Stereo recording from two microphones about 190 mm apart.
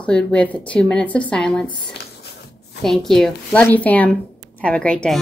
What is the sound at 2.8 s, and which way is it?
A woman's voice, centre (ahead or behind).